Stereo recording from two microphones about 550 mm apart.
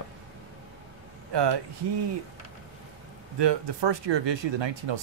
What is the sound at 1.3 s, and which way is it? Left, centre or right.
Speech, right.